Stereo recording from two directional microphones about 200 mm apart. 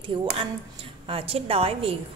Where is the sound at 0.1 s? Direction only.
25° right (ahead or behind).